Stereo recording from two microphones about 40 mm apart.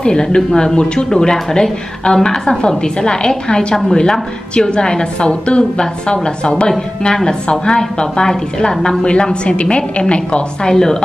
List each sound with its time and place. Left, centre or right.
0.0 s a woman's voice: centre
10.7 s speech: centre